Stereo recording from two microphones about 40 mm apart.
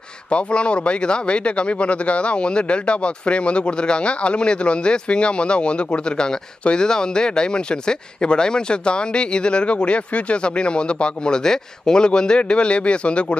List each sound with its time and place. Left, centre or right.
0.3 s speech: left